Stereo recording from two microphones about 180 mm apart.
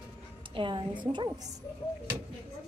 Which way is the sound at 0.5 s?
25° right (ahead or behind).